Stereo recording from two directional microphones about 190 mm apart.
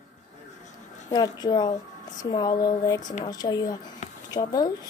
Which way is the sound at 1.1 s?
20° left (ahead or behind).